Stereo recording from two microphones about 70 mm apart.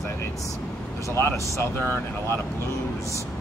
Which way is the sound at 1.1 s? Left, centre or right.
Left.